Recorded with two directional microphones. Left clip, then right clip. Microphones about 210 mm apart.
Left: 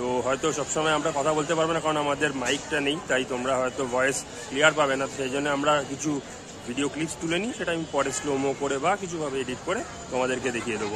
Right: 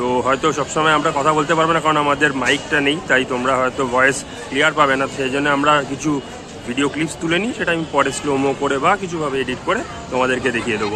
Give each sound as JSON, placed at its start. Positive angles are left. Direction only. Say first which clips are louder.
{"t": 0.0, "sound": "a man's voice", "louder": "right 9 dB", "side_deg": 15}